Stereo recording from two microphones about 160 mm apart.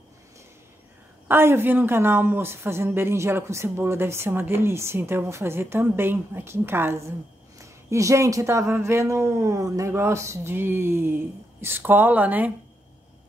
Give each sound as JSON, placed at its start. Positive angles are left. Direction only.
{"t": 1.2, "sound": "a woman's voice", "side_deg": -15}